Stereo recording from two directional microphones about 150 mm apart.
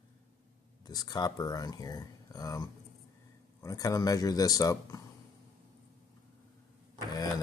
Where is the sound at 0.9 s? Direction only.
25° left (ahead or behind).